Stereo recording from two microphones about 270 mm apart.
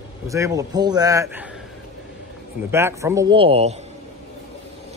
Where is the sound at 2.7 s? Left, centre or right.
Centre.